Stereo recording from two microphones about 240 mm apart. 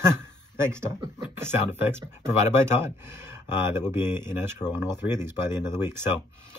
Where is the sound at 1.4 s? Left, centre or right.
Centre.